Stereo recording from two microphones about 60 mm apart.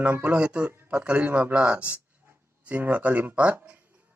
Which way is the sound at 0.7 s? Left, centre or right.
Right.